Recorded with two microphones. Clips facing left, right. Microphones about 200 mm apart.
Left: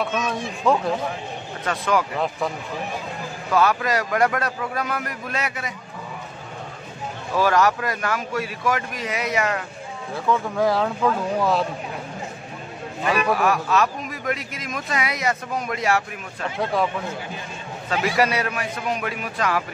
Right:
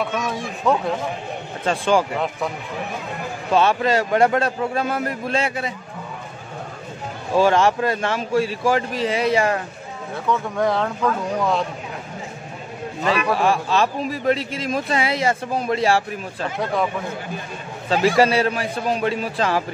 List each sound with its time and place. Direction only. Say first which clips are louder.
0.7 s speech: even; centre (ahead or behind)
1.6 s a man's voice: right 4 dB; 30° right (ahead or behind)
2.1 s speech: even; centre (ahead or behind)
3.5 s a man's voice: right 3 dB; 25° right (ahead or behind)
7.3 s a man's voice: right 3 dB; 25° right (ahead or behind)
10.1 s speech: even; centre (ahead or behind)
13.1 s a man's voice: right 1 dB; 30° right (ahead or behind)
17.8 s a man's voice: right 5 dB; 30° right (ahead or behind)